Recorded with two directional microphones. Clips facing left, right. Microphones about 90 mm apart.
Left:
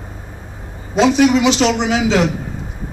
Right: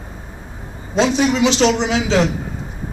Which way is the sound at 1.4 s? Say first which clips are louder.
Even; 30° right (ahead or behind).